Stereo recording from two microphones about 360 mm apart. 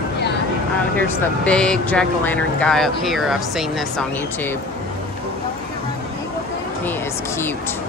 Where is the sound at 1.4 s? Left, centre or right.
Centre.